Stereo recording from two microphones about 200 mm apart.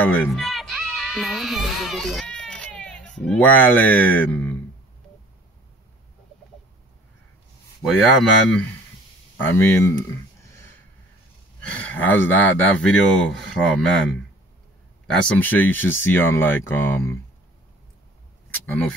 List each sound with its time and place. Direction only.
0.0 s speech: 10° left (ahead or behind)
7.8 s speech: centre (ahead or behind)
11.6 s speech: 5° left (ahead or behind)
15.0 s speech: 5° left (ahead or behind)
18.5 s a sound: 5° left (ahead or behind)